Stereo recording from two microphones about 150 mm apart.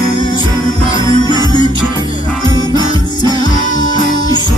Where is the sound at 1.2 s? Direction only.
25° left (ahead or behind).